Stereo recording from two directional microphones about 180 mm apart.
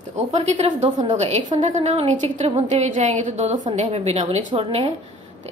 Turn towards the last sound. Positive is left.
turn(degrees=-30)  # may be behind; listen again after turning